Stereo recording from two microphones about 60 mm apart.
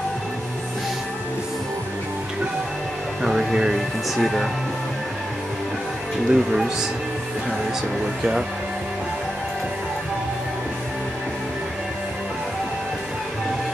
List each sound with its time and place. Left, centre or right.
3.2 s speech: centre
6.2 s speech: centre
8.0 s speech: centre